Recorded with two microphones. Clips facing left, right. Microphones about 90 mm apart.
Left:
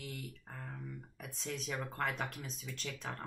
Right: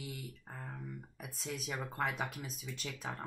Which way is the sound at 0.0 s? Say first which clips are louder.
Even; 10° right (ahead or behind).